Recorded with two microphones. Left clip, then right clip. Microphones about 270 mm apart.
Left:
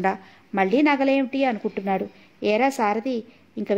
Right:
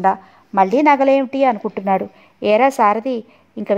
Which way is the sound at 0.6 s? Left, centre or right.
Right.